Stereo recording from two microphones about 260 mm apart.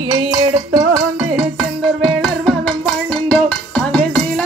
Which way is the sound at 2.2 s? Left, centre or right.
Centre.